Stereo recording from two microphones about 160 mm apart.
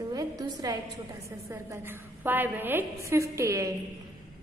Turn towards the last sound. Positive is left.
turn(degrees=-20)  # may be behind; listen again after turning